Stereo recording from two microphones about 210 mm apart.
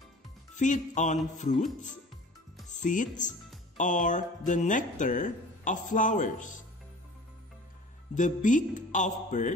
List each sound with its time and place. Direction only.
0.6 s speech: 35° left (ahead or behind)
2.7 s speech: 35° left (ahead or behind)
8.1 s speech: 35° left (ahead or behind)